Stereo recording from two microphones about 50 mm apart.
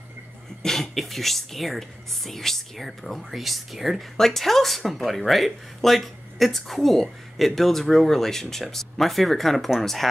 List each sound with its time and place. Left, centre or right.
0.6 s speech: centre
4.2 s speech: centre